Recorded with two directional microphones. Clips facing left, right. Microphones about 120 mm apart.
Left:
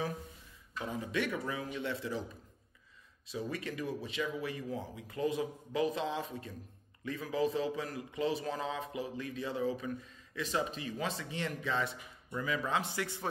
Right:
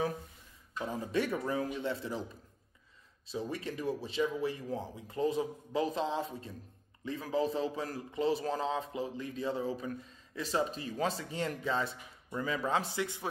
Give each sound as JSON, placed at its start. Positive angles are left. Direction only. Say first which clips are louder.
{"t": 0.7, "sound": "speech", "louder": "right 2 dB", "side_deg": -35}
{"t": 3.3, "sound": "speech", "louder": "right 1 dB", "side_deg": -30}